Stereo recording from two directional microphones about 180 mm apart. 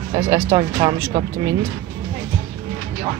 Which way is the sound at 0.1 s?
20° right (ahead or behind).